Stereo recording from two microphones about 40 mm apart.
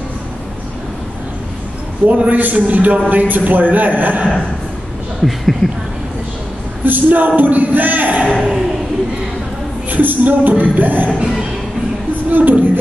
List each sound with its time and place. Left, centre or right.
2.0 s a man's voice: right
5.2 s speech: centre
6.8 s a man's voice: right
8.4 s speech: centre
9.8 s music: right
10.6 s a man's voice: right
12.3 s a man's voice: right